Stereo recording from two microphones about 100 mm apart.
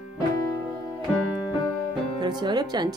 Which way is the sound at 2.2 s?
45° right (ahead or behind).